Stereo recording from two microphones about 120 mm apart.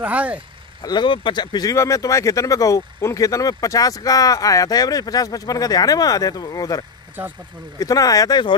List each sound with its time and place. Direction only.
0.0 s speech: 10° right (ahead or behind)
0.8 s speech: 40° left (ahead or behind)
7.8 s speech: 30° left (ahead or behind)